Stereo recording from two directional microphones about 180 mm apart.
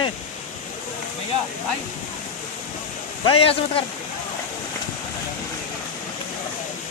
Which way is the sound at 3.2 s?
30° left (ahead or behind).